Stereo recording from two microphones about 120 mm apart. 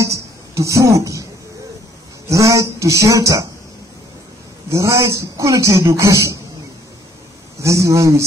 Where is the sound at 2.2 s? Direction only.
25° right (ahead or behind).